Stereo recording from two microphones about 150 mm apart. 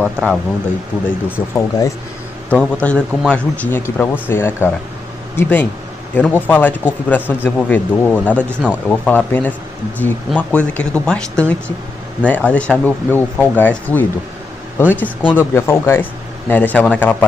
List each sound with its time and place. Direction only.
0.0 s speech: 5° left (ahead or behind)
1.3 s speech: 20° left (ahead or behind)